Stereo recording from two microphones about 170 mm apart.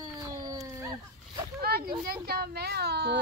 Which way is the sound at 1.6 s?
65° right (ahead or behind).